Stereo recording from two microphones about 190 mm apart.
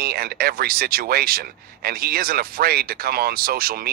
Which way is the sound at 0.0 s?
55° right (ahead or behind).